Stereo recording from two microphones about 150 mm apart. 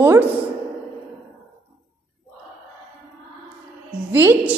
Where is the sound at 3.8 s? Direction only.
10° right (ahead or behind).